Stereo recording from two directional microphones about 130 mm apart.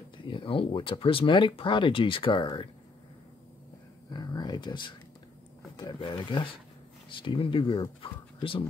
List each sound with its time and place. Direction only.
0.3 s speech: 40° left (ahead or behind)
4.1 s speech: 35° left (ahead or behind)